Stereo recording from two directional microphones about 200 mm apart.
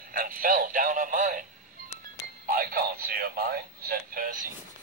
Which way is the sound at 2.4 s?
45° right (ahead or behind).